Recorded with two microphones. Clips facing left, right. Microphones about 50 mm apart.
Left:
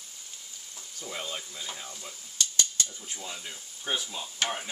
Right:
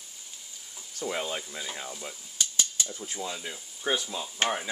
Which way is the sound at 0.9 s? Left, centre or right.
Right.